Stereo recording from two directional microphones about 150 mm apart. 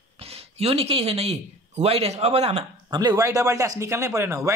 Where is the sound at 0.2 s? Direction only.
40° right (ahead or behind).